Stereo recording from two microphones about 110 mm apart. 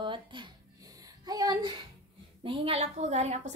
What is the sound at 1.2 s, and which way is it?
Speech, 35° right (ahead or behind).